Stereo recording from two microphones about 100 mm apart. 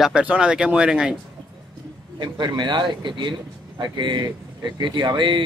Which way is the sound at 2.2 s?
50° right (ahead or behind).